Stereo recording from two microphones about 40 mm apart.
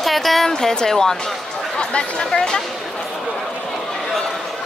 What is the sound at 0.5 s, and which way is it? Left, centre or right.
Speech, centre.